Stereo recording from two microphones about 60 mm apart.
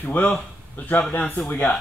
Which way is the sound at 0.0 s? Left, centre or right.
Left.